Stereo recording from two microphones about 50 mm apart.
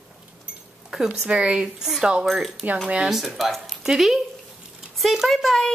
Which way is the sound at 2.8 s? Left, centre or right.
Right.